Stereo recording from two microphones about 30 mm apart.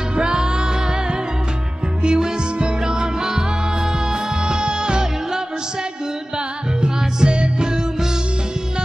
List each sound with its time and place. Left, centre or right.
0.1 s music: right
2.0 s music: right
4.5 s music: right
6.8 s music: right